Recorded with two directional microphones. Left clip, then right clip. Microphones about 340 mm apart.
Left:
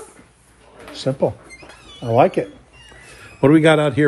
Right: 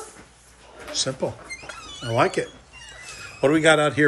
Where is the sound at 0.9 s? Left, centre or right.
Centre.